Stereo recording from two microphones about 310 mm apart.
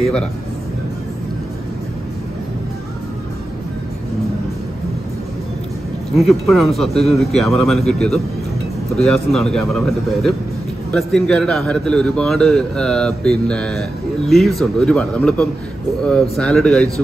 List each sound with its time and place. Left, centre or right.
6.1 s a man's voice: centre
8.9 s a man's voice: centre